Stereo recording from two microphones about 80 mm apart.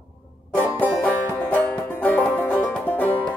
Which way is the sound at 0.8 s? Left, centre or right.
Left.